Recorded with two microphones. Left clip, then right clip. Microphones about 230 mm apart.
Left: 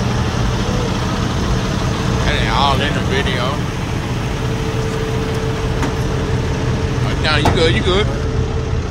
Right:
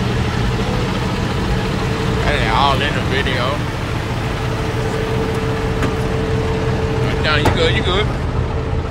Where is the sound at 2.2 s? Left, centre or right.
Centre.